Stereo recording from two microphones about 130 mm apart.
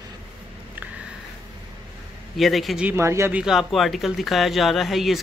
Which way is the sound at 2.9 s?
20° right (ahead or behind).